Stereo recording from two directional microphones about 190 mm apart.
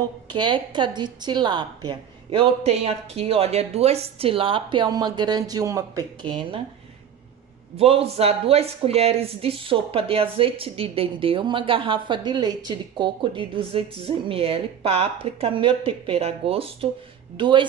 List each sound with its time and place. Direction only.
0.3 s speech: 25° right (ahead or behind)
7.7 s speech: 30° right (ahead or behind)